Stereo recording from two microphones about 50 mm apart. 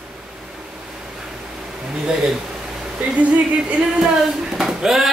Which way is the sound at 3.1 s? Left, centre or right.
Right.